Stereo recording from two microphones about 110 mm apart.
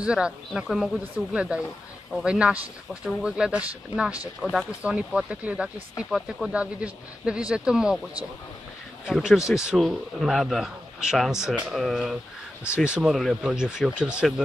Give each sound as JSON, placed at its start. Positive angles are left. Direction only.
{"t": 0.0, "sound": "speech", "side_deg": -10}
{"t": 9.0, "sound": "a man's voice", "side_deg": -5}